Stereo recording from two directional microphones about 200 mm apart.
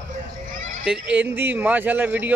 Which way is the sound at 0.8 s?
5° right (ahead or behind).